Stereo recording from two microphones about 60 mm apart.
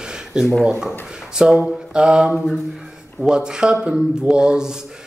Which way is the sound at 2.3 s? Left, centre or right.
Centre.